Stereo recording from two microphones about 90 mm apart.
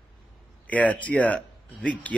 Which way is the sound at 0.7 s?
15° left (ahead or behind).